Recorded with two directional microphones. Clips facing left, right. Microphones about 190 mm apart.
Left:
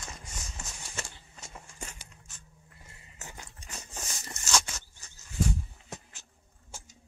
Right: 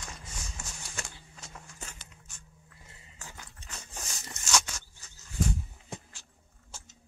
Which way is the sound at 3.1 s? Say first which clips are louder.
Left 2 dB; 20° left (ahead or behind).